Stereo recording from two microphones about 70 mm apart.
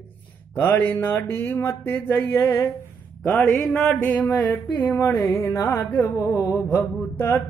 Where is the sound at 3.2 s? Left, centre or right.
Left.